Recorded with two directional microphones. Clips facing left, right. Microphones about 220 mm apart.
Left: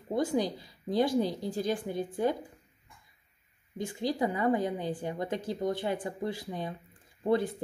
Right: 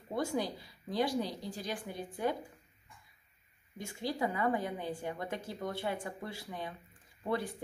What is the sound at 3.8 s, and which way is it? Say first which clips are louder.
A woman's voice: left 5 dB; 20° left (ahead or behind).